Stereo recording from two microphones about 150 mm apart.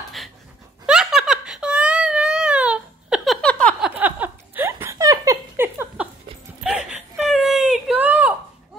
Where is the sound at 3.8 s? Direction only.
10° right (ahead or behind).